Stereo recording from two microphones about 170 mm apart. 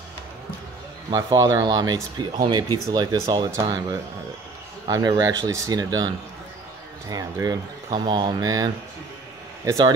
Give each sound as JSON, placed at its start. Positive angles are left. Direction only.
{"t": 1.1, "sound": "speech", "side_deg": -20}
{"t": 4.8, "sound": "speech", "side_deg": -25}